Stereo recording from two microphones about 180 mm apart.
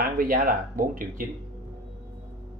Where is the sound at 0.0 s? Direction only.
55° right (ahead or behind).